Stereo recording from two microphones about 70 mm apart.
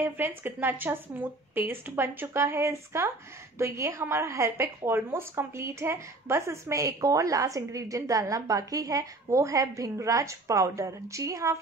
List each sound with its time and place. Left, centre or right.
0.0 s a woman's voice: right